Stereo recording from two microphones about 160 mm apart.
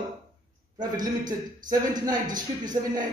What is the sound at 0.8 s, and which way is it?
A man's voice, 25° right (ahead or behind).